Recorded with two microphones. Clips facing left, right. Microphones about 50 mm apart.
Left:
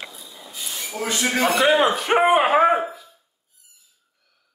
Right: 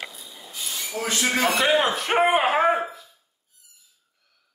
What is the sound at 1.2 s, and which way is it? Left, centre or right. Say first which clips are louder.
Speech: left 2 dB; left.